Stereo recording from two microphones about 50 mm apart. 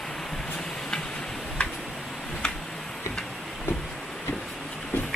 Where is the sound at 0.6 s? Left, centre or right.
Centre.